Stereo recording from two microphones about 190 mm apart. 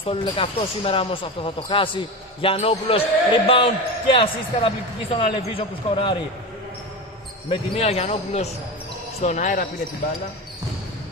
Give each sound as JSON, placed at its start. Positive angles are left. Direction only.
{"t": 0.0, "sound": "speech", "side_deg": 30}
{"t": 7.4, "sound": "speech", "side_deg": 30}